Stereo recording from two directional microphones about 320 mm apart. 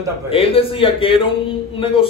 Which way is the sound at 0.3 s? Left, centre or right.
Centre.